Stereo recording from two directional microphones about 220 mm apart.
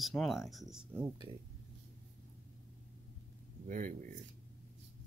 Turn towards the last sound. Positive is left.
turn(degrees=-35)  # may be behind; listen again after turning